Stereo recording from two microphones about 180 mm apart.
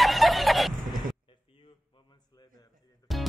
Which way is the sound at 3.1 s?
Centre (ahead or behind).